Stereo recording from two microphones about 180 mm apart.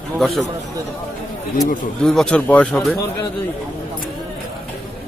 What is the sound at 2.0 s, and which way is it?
A man's voice, 5° left (ahead or behind).